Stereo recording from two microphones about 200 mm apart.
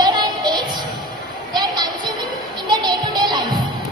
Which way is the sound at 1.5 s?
20° right (ahead or behind).